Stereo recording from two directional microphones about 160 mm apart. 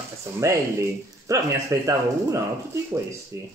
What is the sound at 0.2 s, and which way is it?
Speech, 20° right (ahead or behind).